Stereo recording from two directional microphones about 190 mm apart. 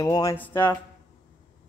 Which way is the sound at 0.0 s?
20° left (ahead or behind).